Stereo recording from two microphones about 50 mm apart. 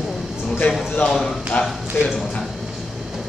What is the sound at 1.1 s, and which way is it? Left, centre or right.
Speech, centre.